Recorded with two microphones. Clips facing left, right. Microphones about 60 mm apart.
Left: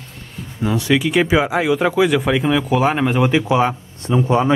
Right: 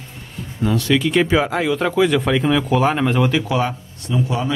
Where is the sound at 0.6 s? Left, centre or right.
Centre.